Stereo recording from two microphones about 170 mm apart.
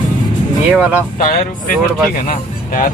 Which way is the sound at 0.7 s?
10° right (ahead or behind).